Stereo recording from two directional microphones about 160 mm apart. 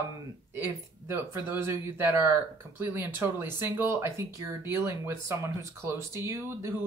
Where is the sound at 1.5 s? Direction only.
15° right (ahead or behind).